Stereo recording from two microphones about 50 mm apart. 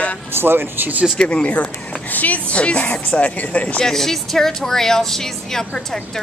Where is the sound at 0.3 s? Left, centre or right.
Right.